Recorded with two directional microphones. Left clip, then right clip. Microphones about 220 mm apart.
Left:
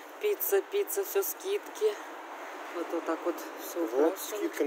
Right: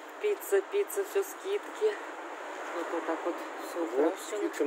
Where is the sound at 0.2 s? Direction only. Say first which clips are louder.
Even; 15° left (ahead or behind).